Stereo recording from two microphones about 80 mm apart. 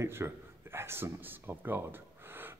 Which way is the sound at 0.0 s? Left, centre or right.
Right.